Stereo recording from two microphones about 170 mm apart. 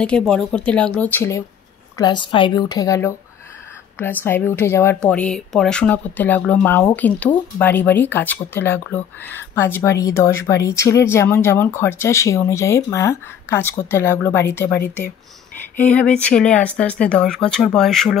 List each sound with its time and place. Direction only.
0.0 s speech: 5° left (ahead or behind)
2.0 s speech: 25° left (ahead or behind); by 18.1 s centre (ahead or behind)